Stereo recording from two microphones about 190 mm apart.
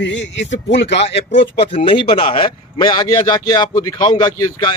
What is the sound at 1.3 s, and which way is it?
A man's voice, 30° left (ahead or behind).